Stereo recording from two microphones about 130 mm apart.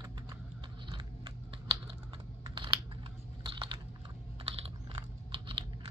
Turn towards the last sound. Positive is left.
turn(degrees=-40)  # may be behind; listen again after turning